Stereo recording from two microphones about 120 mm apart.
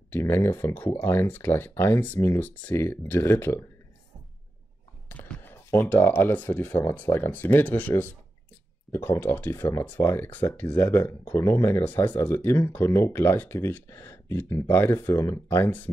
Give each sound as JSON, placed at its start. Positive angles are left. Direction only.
{"t": 0.1, "sound": "speech", "side_deg": 20}
{"t": 5.1, "sound": "speech", "side_deg": 15}